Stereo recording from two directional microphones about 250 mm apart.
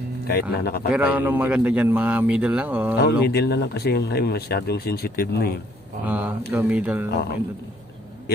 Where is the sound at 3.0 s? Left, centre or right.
Left.